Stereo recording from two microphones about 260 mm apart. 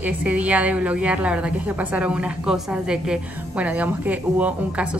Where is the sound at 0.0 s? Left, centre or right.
Centre.